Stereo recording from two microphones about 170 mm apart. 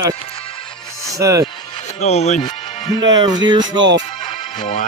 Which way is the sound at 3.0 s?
90° right.